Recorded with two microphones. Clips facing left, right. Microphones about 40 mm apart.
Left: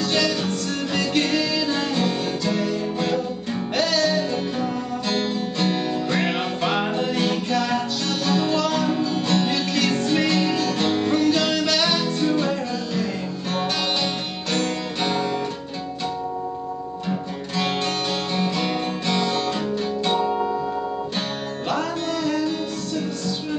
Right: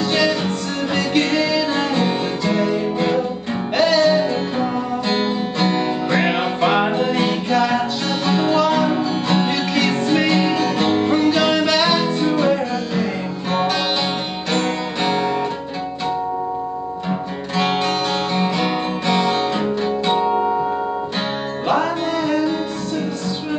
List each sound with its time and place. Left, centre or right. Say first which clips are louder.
0.0 s music: right 4 dB; centre
17.6 s music: right 5 dB; centre
21.6 s music: right 6 dB; centre